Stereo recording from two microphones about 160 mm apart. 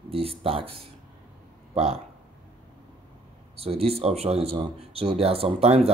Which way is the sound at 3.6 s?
40° right (ahead or behind).